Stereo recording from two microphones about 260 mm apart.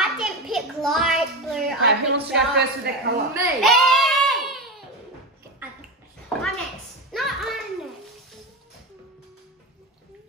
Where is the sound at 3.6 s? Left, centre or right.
Centre.